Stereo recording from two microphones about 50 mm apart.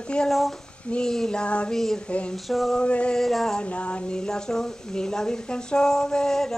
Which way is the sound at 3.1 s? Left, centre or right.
Centre.